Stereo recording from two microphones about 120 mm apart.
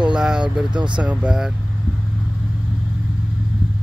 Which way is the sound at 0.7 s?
40° right (ahead or behind).